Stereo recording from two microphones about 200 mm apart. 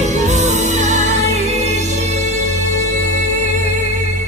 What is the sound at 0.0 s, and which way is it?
Music, 35° right (ahead or behind).